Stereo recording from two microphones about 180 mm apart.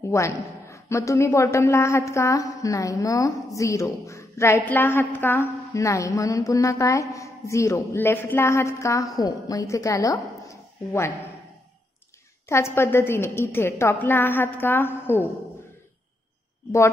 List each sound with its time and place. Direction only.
0.0 s a woman's voice: 15° left (ahead or behind)
12.4 s a woman's voice: 15° left (ahead or behind)